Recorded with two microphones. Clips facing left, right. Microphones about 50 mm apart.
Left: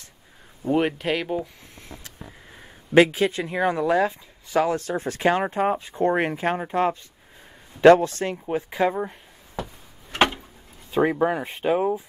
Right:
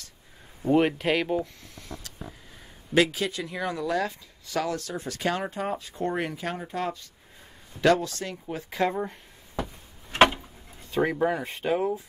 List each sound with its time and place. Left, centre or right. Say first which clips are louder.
0.6 s speech: even; centre
2.0 s speech: even; left
8.6 s speech: left 2 dB; centre
10.1 s a sound: right 2 dB; centre
10.9 s speech: left 4 dB; centre